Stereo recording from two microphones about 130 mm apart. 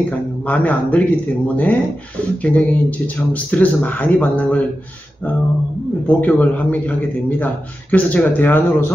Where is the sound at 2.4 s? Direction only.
10° left (ahead or behind).